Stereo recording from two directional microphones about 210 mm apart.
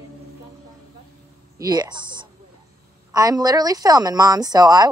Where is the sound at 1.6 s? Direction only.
20° right (ahead or behind).